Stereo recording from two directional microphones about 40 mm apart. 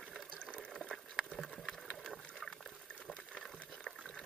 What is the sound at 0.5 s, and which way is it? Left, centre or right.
Fill, left.